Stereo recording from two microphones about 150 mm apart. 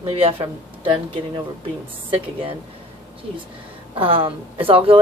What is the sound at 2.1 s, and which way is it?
Speech, 40° right (ahead or behind).